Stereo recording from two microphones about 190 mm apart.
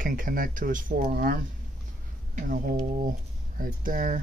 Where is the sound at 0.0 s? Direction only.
45° right (ahead or behind).